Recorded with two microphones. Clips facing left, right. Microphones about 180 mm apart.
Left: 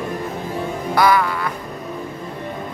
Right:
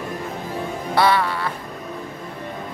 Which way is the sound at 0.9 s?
30° right (ahead or behind).